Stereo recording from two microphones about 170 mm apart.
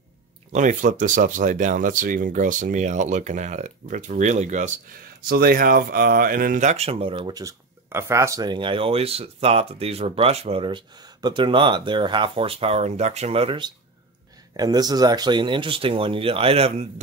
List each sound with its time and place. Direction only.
0.5 s speech: 45° right (ahead or behind)
5.2 s speech: 60° right (ahead or behind); by 16.8 s 35° right (ahead or behind)